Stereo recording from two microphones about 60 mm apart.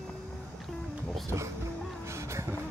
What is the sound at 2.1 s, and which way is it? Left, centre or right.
Vehicle, right.